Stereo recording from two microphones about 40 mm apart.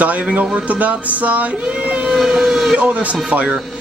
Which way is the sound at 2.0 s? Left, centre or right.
Centre.